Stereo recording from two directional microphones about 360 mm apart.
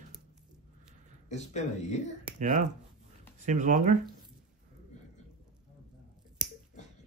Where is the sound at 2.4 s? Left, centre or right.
Right.